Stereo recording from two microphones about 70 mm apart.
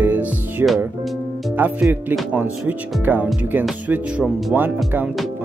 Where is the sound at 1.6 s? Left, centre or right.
Right.